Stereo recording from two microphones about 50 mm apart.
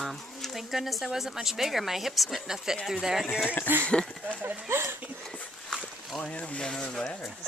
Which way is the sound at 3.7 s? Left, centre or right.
Right.